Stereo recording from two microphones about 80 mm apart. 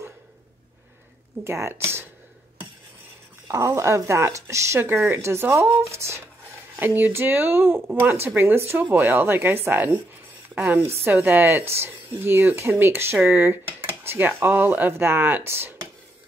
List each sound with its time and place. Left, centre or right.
1.4 s speech: right
3.4 s speech: right
6.8 s a woman's voice: right